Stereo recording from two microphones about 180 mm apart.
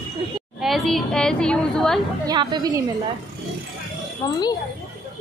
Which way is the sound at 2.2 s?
25° right (ahead or behind).